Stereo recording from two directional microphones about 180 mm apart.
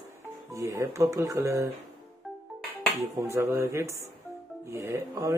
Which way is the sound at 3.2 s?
15° right (ahead or behind).